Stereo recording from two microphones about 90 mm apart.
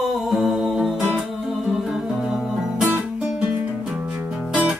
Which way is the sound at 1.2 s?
5° right (ahead or behind).